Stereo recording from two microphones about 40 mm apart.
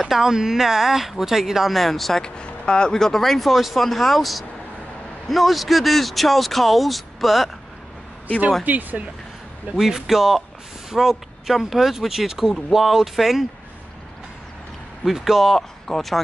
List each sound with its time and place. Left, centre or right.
0.0 s speech: centre
1.7 s speech: centre
2.2 s speech: left; by 7.5 s centre
8.6 s speech: right
9.8 s speech: centre
15.0 s speech: centre
15.9 s speech: centre